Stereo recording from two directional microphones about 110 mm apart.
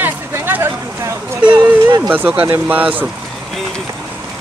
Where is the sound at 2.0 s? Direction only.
15° right (ahead or behind).